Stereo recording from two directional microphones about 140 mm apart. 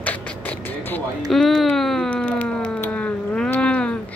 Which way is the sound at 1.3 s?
Centre (ahead or behind).